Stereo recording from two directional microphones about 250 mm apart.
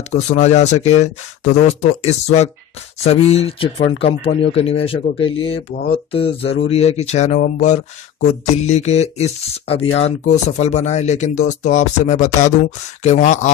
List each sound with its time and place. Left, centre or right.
0.1 s speech: left